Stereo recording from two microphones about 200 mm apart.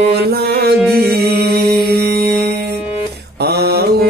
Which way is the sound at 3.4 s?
50° right (ahead or behind).